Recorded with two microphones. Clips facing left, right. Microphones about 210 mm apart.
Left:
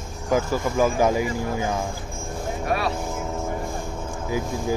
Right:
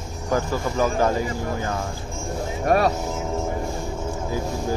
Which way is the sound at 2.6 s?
45° right (ahead or behind).